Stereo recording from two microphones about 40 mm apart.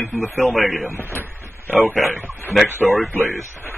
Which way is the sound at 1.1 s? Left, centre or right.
Right.